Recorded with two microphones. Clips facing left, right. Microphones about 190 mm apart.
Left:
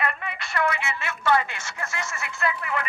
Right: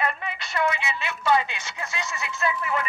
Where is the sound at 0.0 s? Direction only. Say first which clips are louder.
Right 1 dB; 25° right (ahead or behind).